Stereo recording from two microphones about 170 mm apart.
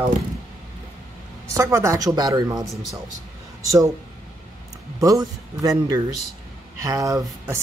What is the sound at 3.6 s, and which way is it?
Speech, 20° right (ahead or behind).